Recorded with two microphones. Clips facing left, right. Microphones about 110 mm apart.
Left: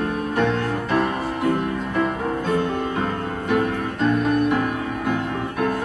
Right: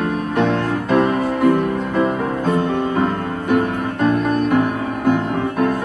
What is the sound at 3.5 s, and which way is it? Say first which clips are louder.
Music: right 3 dB; 50° right (ahead or behind).